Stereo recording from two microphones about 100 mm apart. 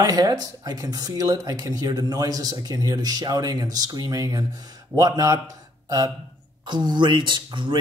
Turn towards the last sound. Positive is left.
turn(degrees=-55)  # may be behind; listen again after turning